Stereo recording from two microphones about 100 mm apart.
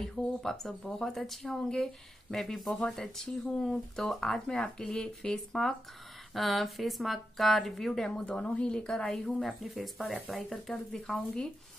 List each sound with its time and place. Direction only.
0.0 s speech: 5° left (ahead or behind)